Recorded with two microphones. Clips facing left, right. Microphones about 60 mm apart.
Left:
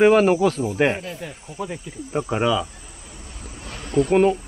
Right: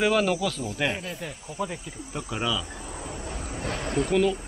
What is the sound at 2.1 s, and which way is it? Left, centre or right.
Speech, left.